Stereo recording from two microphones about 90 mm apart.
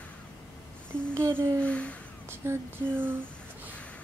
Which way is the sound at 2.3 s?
25° right (ahead or behind).